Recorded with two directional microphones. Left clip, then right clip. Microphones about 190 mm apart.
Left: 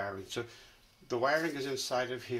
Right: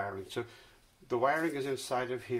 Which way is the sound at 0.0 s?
25° right (ahead or behind).